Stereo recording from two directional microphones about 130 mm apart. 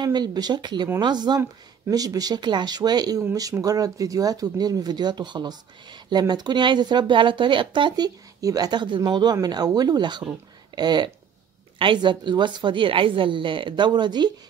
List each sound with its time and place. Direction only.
0.0 s speech: 35° right (ahead or behind)